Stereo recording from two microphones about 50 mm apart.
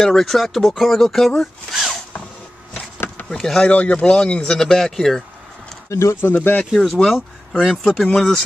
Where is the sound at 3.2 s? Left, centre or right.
Left.